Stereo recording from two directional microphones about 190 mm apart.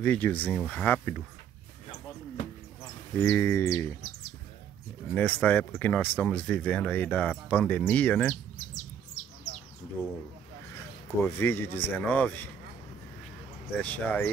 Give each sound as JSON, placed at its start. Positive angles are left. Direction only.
{"t": 0.0, "sound": "speech", "side_deg": 10}
{"t": 3.2, "sound": "speech", "side_deg": 10}
{"t": 5.1, "sound": "speech", "side_deg": 5}
{"t": 8.5, "sound": "bird", "side_deg": 40}
{"t": 10.0, "sound": "speech", "side_deg": 15}
{"t": 11.2, "sound": "speech", "side_deg": 10}
{"t": 13.7, "sound": "speech", "side_deg": 10}